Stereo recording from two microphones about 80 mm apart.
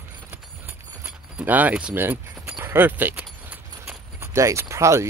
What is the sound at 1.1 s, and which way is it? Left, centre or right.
Keys jangling, centre.